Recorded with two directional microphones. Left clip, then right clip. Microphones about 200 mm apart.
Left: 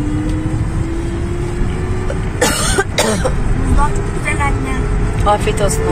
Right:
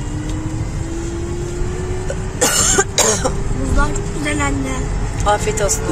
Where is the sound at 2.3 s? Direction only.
10° right (ahead or behind).